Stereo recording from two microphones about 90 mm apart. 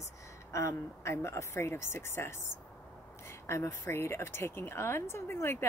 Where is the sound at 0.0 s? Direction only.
35° left (ahead or behind).